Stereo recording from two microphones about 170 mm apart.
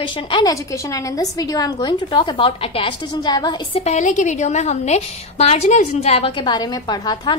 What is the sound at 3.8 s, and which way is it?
A woman's voice, 45° left (ahead or behind).